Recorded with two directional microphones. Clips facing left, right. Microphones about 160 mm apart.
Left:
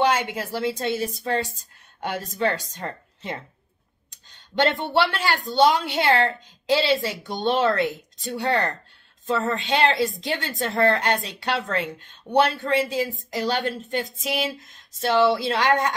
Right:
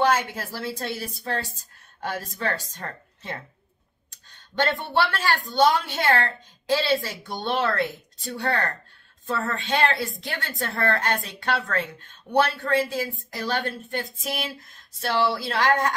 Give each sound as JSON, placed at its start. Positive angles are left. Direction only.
{"t": 0.0, "sound": "speech", "side_deg": 20}